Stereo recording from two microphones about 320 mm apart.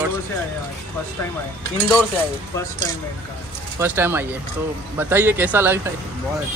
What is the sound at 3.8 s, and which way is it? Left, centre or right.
Speech, centre.